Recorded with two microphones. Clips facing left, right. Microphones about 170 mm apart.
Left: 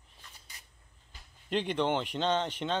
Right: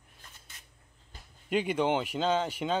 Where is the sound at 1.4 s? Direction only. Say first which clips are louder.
Right 2 dB; 10° right (ahead or behind).